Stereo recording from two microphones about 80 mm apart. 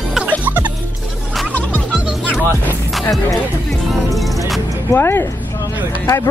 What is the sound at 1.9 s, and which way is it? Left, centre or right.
Music, centre.